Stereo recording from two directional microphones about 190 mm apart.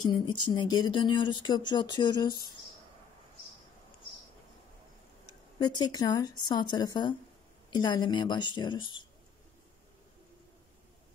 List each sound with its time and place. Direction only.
0.0 s speech: 25° left (ahead or behind)
5.6 s speech: 20° left (ahead or behind)